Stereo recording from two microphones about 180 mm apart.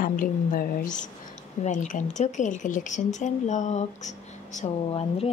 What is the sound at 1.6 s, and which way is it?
A woman's voice, 45° left (ahead or behind).